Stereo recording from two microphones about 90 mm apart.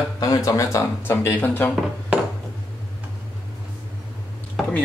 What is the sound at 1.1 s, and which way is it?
Speech, 25° left (ahead or behind).